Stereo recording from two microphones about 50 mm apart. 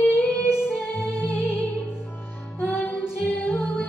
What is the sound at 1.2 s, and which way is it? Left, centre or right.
Music, left.